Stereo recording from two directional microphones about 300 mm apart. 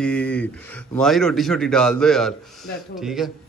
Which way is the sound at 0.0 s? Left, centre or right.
Centre.